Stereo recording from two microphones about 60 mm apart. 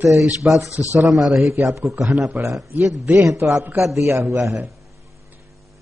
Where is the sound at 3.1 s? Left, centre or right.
Right.